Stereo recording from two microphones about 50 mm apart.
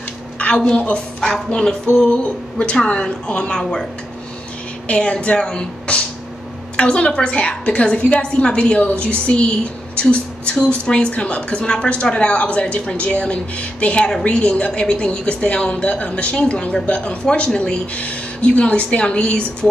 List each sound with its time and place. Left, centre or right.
0.4 s a woman's voice: centre
1.5 s a sound: centre
2.6 s a woman's voice: left
4.8 s a woman's voice: left